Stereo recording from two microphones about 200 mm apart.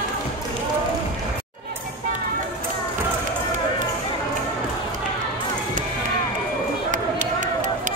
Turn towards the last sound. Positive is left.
turn(degrees=-40)  # may be behind; listen again after turning